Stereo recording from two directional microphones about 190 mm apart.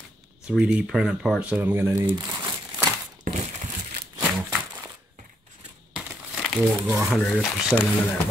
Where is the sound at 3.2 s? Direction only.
45° right (ahead or behind).